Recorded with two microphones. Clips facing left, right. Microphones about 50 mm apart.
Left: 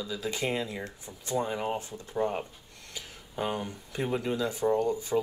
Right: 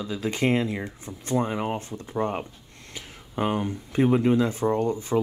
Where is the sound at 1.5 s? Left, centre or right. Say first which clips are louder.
Right 3 dB; right.